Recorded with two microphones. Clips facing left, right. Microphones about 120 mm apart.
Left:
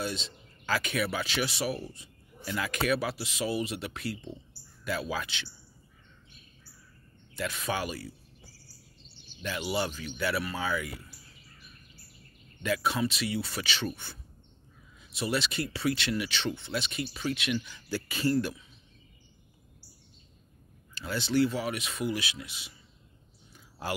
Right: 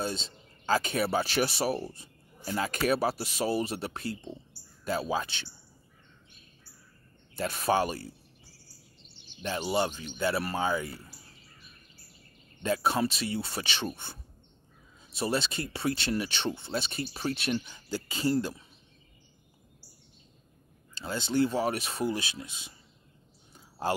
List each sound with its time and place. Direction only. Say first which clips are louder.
0.0 s speech: right 1 dB; 35° right (ahead or behind)
7.3 s speech: right 6 dB; 40° right (ahead or behind)
9.4 s speech: right 3 dB; 30° right (ahead or behind)
12.6 s speech: right 2 dB; 30° right (ahead or behind)
15.1 s speech: right 1 dB; 30° right (ahead or behind)
20.9 s speech: left 1 dB; 25° right (ahead or behind)